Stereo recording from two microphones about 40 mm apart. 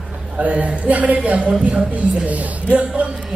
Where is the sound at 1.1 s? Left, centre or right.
Right.